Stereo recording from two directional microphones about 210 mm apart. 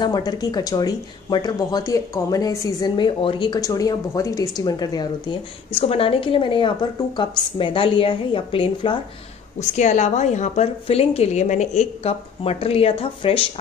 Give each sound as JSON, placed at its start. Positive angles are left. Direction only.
{"t": 0.0, "sound": "speech", "side_deg": 20}